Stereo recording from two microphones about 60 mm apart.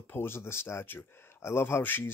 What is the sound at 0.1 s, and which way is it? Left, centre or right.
Speech, left.